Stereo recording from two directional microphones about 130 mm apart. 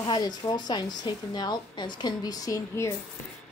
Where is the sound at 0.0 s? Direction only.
30° left (ahead or behind).